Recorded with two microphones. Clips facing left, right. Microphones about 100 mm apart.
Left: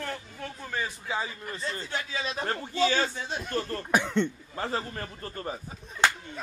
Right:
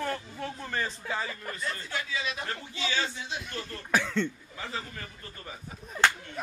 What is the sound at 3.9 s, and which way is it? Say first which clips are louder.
Speech: left 2 dB; 20° left (ahead or behind).